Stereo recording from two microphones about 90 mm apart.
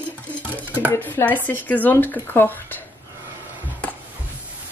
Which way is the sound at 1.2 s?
20° left (ahead or behind).